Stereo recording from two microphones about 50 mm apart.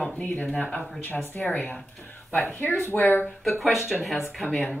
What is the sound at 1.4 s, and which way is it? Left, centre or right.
Speech, left.